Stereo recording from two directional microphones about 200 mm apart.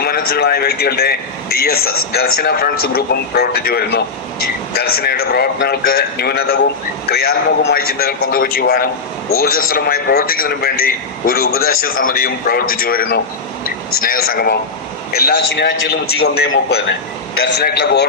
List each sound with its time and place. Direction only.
0.0 s speech: 50° left (ahead or behind)
17.6 s a man's voice: 55° left (ahead or behind)